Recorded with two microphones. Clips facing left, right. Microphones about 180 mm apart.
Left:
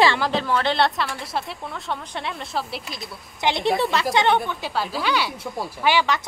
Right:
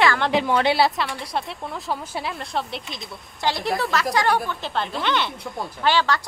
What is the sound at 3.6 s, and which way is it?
Speech, centre (ahead or behind).